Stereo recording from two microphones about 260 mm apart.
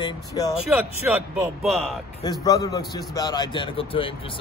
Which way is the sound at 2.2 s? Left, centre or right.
Centre.